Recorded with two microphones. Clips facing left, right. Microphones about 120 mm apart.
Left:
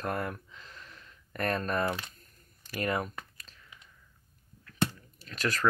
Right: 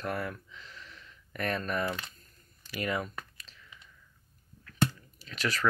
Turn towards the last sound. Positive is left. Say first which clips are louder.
# left 1 dB
turn(degrees=45)  # may be behind; listen again after turning